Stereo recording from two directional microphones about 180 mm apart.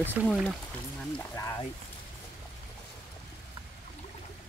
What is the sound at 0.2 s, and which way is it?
Speech, 5° right (ahead or behind).